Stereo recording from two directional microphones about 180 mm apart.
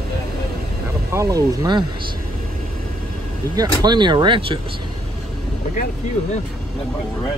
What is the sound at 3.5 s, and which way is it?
Speech, 20° right (ahead or behind).